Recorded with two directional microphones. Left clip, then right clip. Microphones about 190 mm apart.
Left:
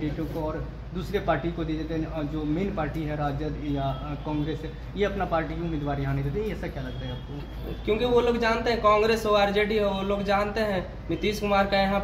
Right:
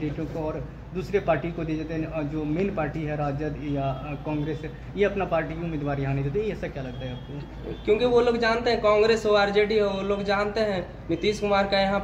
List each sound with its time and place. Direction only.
1.1 s speech: 35° right (ahead or behind)
2.5 s speech: 35° right (ahead or behind)
4.9 s speech: 35° right (ahead or behind)
7.8 s a man's voice: centre (ahead or behind)